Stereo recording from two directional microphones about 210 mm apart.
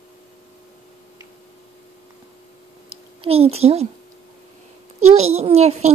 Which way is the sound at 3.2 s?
30° right (ahead or behind).